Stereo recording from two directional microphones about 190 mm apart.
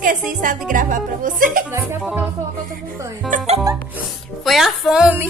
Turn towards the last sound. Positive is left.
turn(degrees=-10)  # may be behind; listen again after turning